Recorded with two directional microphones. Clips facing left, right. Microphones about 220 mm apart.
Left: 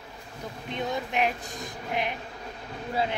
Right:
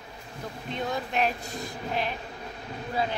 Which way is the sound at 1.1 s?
15° left (ahead or behind).